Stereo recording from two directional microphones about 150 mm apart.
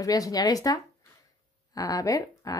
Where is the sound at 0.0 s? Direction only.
25° left (ahead or behind).